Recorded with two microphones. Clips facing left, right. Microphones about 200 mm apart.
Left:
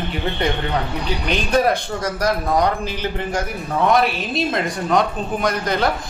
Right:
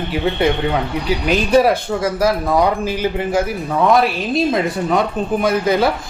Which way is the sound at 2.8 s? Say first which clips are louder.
Right 5 dB; 10° right (ahead or behind).